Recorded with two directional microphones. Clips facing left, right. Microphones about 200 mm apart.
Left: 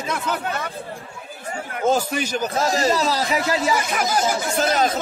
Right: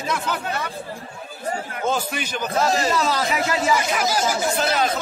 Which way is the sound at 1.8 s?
40° left (ahead or behind).